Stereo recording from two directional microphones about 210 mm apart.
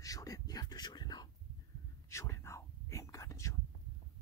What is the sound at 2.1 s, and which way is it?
Whispering, 15° left (ahead or behind).